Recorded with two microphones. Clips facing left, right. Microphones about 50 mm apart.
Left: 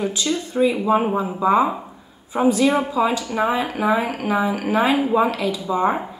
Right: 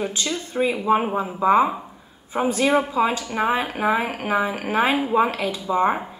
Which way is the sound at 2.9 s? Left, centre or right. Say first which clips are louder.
Left 1 dB; right.